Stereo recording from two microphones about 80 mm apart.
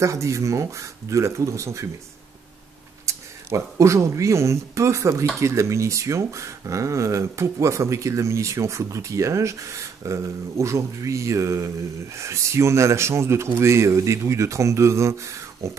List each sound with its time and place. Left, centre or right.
0.0 s speech: right
3.1 s speech: right